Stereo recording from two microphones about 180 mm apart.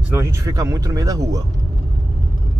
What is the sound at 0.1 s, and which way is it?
Speech, 15° right (ahead or behind).